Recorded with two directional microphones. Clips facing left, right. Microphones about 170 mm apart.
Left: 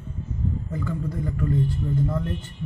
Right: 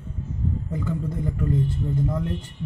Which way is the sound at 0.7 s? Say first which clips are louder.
Right 1 dB; 20° right (ahead or behind).